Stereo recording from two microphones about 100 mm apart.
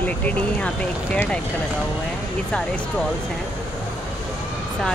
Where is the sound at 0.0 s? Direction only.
15° left (ahead or behind).